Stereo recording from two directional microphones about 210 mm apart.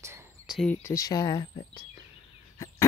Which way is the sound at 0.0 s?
10° right (ahead or behind).